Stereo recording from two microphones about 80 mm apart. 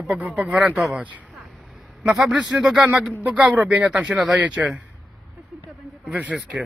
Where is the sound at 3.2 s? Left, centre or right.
Centre.